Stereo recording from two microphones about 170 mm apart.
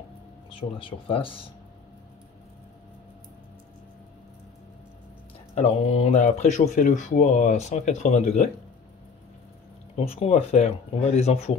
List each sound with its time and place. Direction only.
0.6 s speech: 30° left (ahead or behind)
5.5 s speech: 40° left (ahead or behind)
9.9 s speech: 35° left (ahead or behind)